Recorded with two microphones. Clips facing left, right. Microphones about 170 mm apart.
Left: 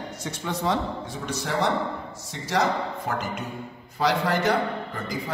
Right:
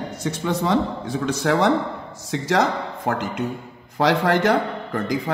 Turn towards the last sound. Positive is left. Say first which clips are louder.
# right 8 dB
turn(degrees=-90)